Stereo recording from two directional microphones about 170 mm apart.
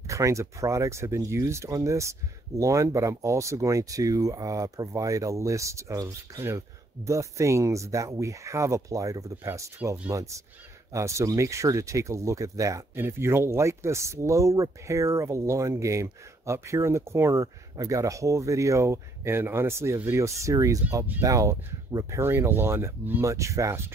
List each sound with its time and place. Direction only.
0.0 s speech: 20° right (ahead or behind)